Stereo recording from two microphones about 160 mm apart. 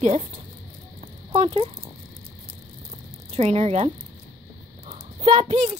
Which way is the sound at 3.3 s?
40° right (ahead or behind).